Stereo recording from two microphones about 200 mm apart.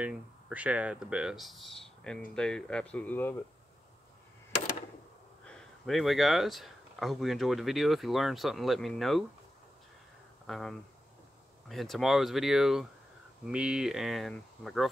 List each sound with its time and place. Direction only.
0.0 s speech: 5° right (ahead or behind); by 3.3 s 10° left (ahead or behind)
5.4 s speech: 5° left (ahead or behind)
10.4 s speech: centre (ahead or behind)